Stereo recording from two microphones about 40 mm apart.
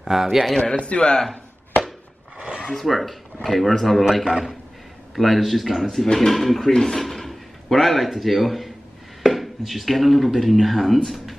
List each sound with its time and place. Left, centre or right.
0.0 s a man's voice: centre
0.6 s speech: left
2.3 s a sound: right
2.9 s speech: centre
4.2 s a man's voice: right
5.1 s speech: centre
6.7 s a sound: centre
8.1 s speech: centre